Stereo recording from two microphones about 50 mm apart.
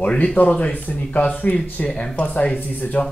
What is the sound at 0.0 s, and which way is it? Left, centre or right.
Speech, left.